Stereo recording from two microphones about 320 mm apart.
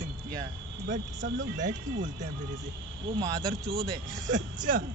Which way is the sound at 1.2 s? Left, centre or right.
Right.